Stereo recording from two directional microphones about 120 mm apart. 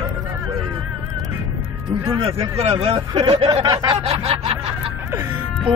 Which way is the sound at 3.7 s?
35° right (ahead or behind).